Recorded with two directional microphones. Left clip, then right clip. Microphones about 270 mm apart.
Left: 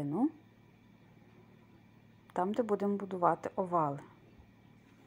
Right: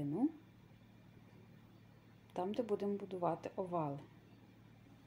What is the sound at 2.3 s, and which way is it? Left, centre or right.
A woman's voice, centre.